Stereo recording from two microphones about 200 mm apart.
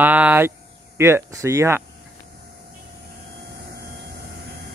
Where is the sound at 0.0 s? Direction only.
10° right (ahead or behind).